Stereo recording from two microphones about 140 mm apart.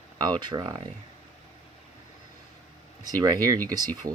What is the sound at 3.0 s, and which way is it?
Speech, 25° right (ahead or behind).